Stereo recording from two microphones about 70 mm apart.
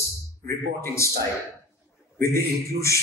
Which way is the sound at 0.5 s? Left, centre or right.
Left.